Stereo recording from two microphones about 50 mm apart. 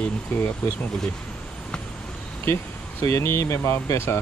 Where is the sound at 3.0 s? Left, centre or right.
Left.